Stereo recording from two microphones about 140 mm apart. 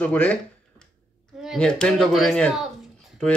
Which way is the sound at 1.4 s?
Centre (ahead or behind).